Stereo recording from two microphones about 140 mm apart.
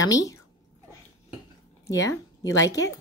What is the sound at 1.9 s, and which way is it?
A woman's voice, 25° left (ahead or behind).